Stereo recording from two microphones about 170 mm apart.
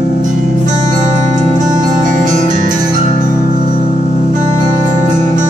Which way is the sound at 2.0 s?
50° right (ahead or behind).